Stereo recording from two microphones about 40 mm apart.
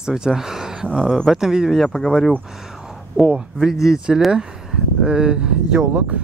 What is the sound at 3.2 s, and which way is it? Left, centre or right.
A man's voice, centre.